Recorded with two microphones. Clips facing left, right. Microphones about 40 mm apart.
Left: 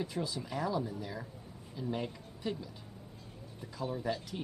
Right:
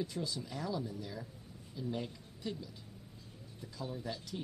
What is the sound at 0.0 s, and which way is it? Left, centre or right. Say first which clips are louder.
Speech: left 2 dB; centre.